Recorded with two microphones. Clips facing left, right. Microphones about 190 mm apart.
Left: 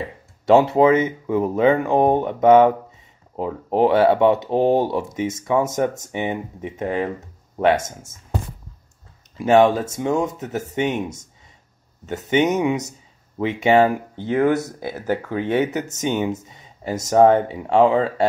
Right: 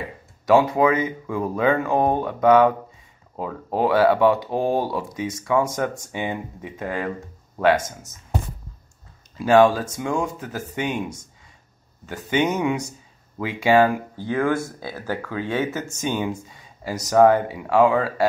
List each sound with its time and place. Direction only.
0.5 s speech: 25° left (ahead or behind)
9.4 s speech: 20° left (ahead or behind)